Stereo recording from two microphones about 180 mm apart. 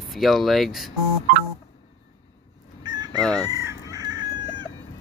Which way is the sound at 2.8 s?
25° right (ahead or behind).